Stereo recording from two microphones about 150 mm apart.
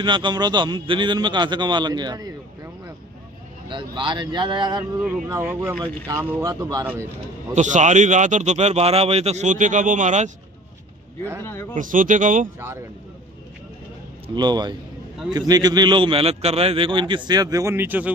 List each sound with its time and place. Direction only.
0.0 s a man's voice: 30° right (ahead or behind)
5.3 s a man's voice: 15° right (ahead or behind)
7.5 s a man's voice: 55° right (ahead or behind)
11.4 s speech: 15° left (ahead or behind)
11.7 s speech: 60° right (ahead or behind)
14.2 s a man's voice: 30° right (ahead or behind); by 18.1 s 10° right (ahead or behind)